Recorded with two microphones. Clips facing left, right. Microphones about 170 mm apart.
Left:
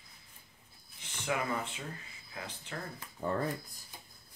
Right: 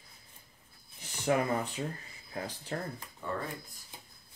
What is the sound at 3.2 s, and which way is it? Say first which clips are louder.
Speech: left 3 dB; 40° left (ahead or behind).